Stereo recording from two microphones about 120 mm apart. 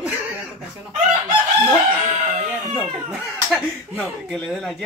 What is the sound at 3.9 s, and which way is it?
Speech, 5° left (ahead or behind).